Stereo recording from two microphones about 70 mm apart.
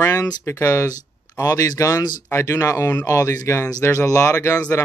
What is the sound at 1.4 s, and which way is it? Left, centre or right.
Speech, left.